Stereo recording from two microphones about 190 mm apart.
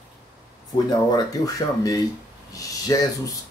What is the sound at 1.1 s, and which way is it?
Speech, 20° left (ahead or behind).